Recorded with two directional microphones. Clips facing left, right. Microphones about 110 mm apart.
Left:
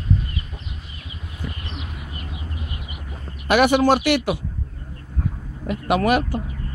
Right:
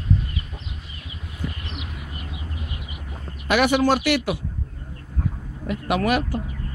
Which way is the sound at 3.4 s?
45° left (ahead or behind).